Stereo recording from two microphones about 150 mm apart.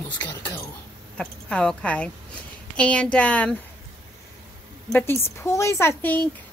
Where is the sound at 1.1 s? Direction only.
5° left (ahead or behind).